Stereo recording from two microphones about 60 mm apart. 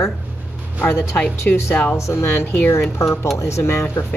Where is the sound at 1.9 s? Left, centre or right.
Left.